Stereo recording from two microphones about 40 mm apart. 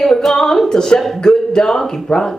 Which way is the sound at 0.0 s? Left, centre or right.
Centre.